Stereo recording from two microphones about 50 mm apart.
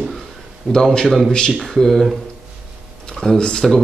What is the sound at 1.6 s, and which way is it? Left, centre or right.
Speech, centre.